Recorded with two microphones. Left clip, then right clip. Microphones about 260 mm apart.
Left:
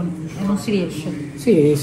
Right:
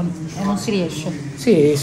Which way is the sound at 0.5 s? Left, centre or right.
Right.